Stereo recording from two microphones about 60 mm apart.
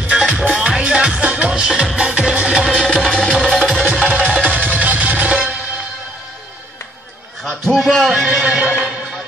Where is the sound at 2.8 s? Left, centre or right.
Centre.